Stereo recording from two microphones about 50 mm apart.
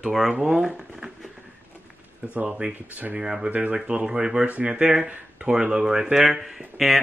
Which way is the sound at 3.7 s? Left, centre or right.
Centre.